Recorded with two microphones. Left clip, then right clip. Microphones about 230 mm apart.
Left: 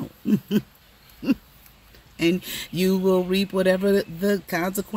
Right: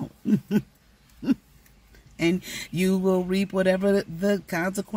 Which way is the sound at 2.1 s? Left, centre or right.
Centre.